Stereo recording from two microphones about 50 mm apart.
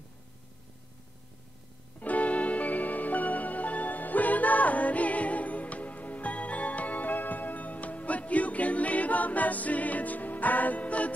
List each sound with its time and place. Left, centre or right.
2.0 s music: left